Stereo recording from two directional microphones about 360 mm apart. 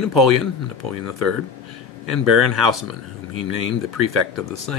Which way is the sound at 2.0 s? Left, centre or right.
Right.